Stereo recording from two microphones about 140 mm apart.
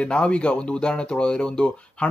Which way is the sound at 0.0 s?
5° left (ahead or behind).